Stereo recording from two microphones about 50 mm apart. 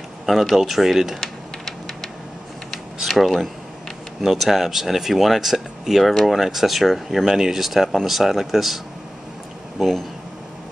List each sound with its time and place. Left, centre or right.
0.3 s speech: centre
3.1 s speech: centre